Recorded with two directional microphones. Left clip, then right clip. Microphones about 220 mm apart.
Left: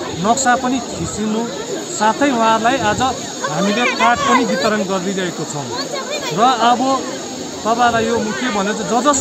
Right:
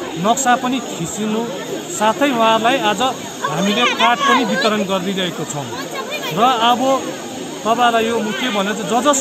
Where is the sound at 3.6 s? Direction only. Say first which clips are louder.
Right 1 dB; 50° left (ahead or behind).